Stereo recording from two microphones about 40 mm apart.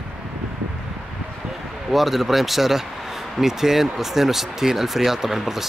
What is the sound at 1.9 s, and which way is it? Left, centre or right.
Speech, centre.